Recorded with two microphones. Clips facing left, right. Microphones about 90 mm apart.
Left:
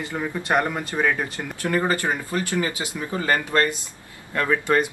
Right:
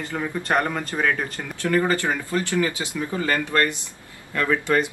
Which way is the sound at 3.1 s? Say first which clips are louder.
Left 1 dB; 25° left (ahead or behind).